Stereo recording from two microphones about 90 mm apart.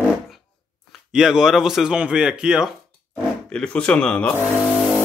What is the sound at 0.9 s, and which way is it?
Speech, 5° right (ahead or behind).